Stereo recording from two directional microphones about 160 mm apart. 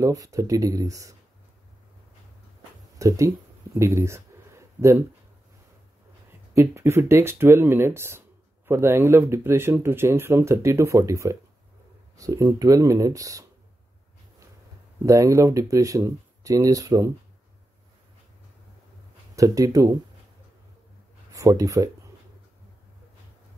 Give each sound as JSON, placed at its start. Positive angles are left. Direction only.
{"t": 0.0, "sound": "speech", "side_deg": -20}
{"t": 3.0, "sound": "a sound", "side_deg": -20}
{"t": 6.5, "sound": "speech", "side_deg": -15}
{"t": 15.0, "sound": "speech", "side_deg": -20}
{"t": 19.3, "sound": "speech", "side_deg": -20}
{"t": 21.3, "sound": "speech", "side_deg": -20}